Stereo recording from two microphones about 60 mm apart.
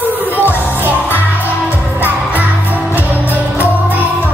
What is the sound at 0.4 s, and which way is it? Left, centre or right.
Music, right.